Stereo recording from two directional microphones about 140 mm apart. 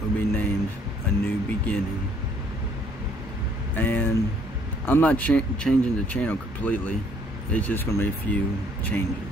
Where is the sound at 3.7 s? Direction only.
10° left (ahead or behind).